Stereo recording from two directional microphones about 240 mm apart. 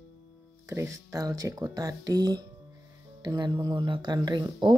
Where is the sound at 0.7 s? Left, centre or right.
Centre.